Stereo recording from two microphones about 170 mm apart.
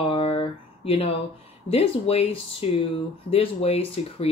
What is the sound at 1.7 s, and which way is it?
Speech, 35° left (ahead or behind).